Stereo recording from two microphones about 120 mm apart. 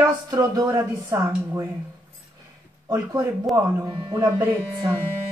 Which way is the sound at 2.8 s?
35° right (ahead or behind).